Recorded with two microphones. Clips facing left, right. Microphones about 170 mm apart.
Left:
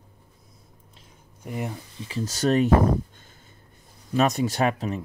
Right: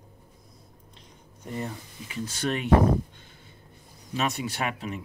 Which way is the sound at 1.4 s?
10° left (ahead or behind).